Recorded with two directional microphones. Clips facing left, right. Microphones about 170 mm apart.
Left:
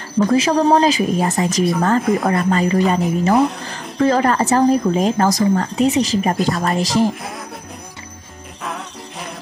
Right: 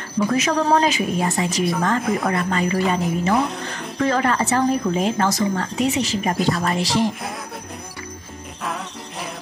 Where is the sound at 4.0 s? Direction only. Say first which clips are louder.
Left 5 dB; 35° left (ahead or behind).